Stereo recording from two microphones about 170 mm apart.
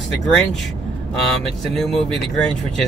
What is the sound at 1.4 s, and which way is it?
Speech, centre (ahead or behind).